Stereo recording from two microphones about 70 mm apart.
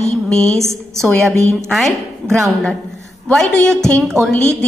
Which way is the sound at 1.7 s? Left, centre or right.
Centre.